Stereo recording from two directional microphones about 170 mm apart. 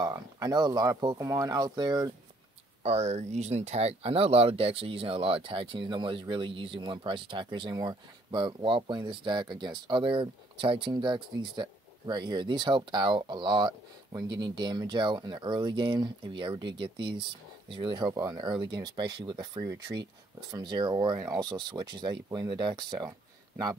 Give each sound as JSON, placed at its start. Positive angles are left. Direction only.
{"t": 0.0, "sound": "speech", "side_deg": -20}
{"t": 2.8, "sound": "speech", "side_deg": -40}